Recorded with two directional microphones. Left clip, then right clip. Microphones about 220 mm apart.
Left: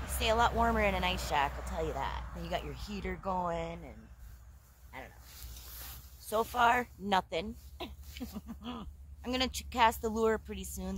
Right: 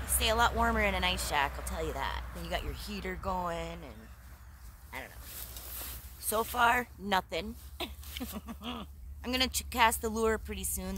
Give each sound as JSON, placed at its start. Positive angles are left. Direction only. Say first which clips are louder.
{"t": 0.0, "sound": "speech", "louder": "right 1 dB", "side_deg": 0}
{"t": 6.2, "sound": "speech", "louder": "even", "side_deg": -10}
{"t": 6.5, "sound": "speech", "louder": "right 1 dB", "side_deg": 0}